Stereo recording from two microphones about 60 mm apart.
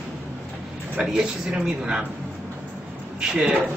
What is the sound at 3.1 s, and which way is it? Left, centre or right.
Speech, centre.